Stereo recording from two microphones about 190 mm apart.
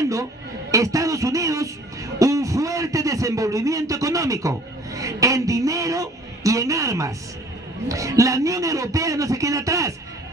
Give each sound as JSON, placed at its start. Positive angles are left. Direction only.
{"t": 0.0, "sound": "a man's voice", "side_deg": -15}